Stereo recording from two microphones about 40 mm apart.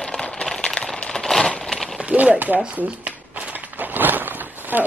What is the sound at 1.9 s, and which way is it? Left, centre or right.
Speech, right.